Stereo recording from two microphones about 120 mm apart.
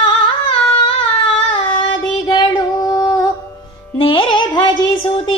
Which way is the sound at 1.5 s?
40° left (ahead or behind).